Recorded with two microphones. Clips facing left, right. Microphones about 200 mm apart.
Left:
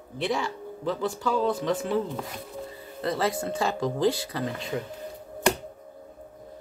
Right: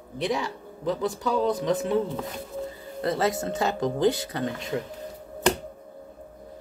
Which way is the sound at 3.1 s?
25° right (ahead or behind).